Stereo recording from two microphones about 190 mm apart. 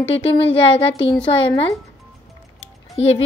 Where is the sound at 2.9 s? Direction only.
35° left (ahead or behind).